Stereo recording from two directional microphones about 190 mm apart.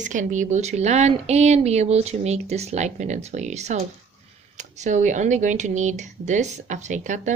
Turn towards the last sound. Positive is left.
turn(degrees=-40)  # may be behind; listen again after turning